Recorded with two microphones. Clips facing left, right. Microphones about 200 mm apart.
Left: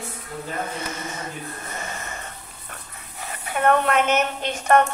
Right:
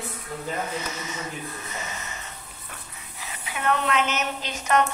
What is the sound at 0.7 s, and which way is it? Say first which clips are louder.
Speech: left 1 dB; 55° left (ahead or behind).